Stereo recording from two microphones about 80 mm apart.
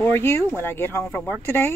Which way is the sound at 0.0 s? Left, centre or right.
Left.